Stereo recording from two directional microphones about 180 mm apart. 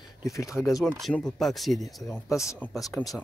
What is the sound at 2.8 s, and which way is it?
Speech, 20° left (ahead or behind).